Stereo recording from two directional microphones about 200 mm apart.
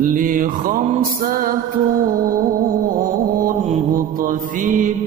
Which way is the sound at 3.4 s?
40° right (ahead or behind).